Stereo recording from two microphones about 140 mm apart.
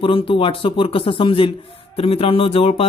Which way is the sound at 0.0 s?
40° left (ahead or behind).